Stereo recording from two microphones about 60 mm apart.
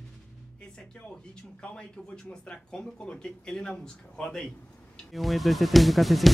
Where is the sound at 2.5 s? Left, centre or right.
Centre.